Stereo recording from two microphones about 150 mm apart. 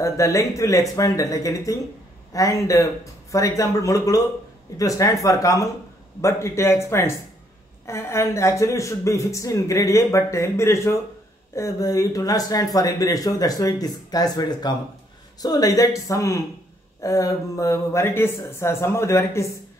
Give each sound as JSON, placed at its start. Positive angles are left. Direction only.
{"t": 0.0, "sound": "speech", "side_deg": 20}